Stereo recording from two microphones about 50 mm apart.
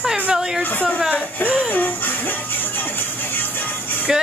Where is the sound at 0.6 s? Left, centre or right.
Left.